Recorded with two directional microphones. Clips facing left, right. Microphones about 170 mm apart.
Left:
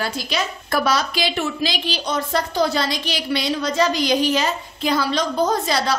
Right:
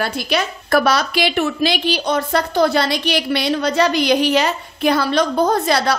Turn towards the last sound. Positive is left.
turn(degrees=-60)  # may be behind; listen again after turning